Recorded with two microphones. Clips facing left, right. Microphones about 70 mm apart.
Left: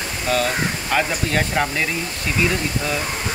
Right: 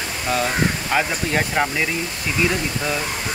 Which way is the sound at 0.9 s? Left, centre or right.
Centre.